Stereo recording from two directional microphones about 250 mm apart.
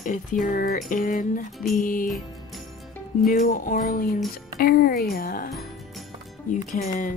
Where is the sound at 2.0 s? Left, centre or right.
Centre.